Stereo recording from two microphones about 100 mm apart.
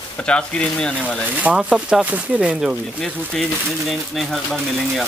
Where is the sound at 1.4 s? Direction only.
15° right (ahead or behind).